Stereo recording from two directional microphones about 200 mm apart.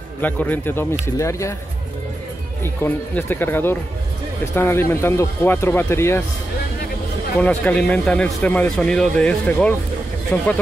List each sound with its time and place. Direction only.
0.2 s speech: 10° left (ahead or behind)
2.6 s speech: 10° left (ahead or behind)
7.3 s speech: 5° left (ahead or behind)